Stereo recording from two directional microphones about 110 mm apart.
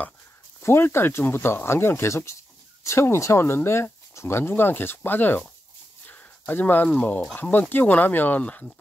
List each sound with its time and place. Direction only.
0.6 s speech: 20° left (ahead or behind)